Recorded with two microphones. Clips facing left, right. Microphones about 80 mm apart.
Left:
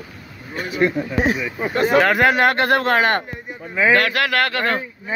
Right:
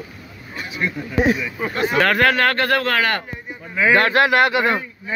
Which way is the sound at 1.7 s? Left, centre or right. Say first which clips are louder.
Left 6 dB; left.